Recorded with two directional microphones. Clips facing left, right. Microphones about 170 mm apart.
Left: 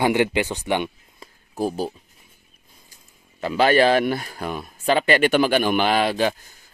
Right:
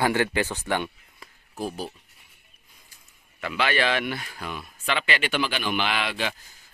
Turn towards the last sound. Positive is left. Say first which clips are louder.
# left 8 dB
turn(degrees=40)  # may be behind; listen again after turning